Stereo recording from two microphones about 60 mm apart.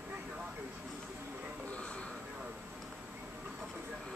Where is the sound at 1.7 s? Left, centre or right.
Left.